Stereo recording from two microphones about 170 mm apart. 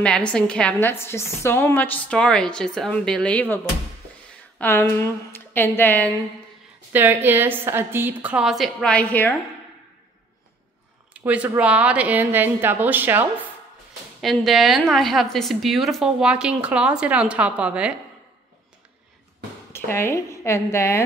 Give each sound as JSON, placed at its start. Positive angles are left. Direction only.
{"t": 0.0, "sound": "a woman's voice", "side_deg": 5}
{"t": 6.9, "sound": "a woman's voice", "side_deg": -10}
{"t": 11.1, "sound": "a woman's voice", "side_deg": -10}
{"t": 14.2, "sound": "a woman's voice", "side_deg": 0}
{"t": 19.7, "sound": "a woman's voice", "side_deg": 15}